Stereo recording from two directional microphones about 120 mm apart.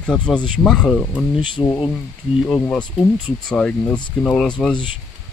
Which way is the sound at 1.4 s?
40° left (ahead or behind).